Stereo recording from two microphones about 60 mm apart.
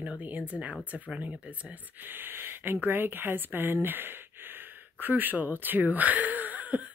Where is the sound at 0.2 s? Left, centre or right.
Right.